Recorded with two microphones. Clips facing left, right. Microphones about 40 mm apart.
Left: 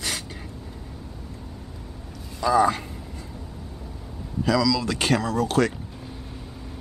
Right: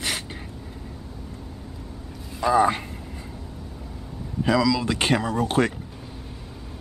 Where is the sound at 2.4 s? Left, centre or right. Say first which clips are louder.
Even; right.